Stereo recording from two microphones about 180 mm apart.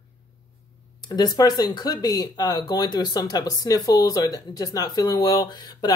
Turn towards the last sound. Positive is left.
turn(degrees=25)  # may be behind; listen again after turning